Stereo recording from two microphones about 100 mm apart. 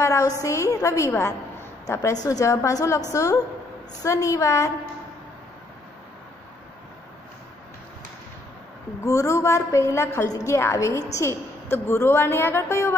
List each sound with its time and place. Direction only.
0.0 s a woman's voice: 30° left (ahead or behind)
9.0 s a woman's voice: 30° left (ahead or behind)